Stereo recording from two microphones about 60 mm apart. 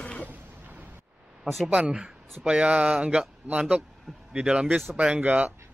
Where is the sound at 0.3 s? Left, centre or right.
Right.